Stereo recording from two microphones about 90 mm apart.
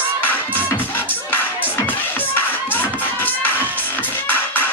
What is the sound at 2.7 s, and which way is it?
Music, 20° left (ahead or behind).